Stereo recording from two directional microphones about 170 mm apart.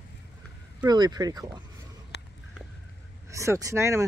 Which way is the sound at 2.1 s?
75° left (ahead or behind).